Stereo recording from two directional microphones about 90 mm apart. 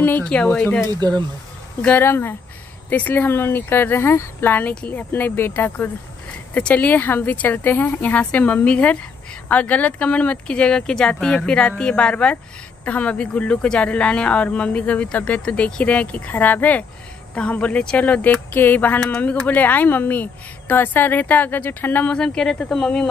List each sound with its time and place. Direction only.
0.2 s speech: 10° left (ahead or behind)
1.0 s speech: 50° right (ahead or behind)
1.8 s speech: 20° left (ahead or behind)